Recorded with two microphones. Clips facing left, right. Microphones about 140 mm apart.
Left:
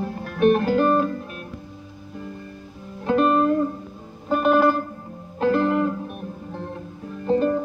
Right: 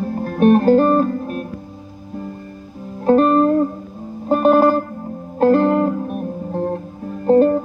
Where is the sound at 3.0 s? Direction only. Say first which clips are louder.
Right 6 dB; 40° right (ahead or behind).